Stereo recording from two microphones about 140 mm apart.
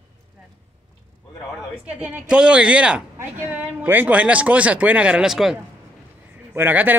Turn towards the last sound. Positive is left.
turn(degrees=-15)  # may be behind; listen again after turning